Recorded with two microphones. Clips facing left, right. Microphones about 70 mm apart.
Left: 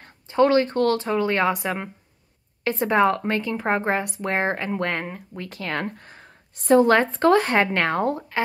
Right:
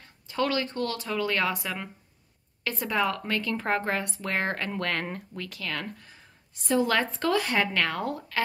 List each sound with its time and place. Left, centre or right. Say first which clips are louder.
0.3 s speech: left 10 dB; left
0.7 s a woman's voice: left 10 dB; left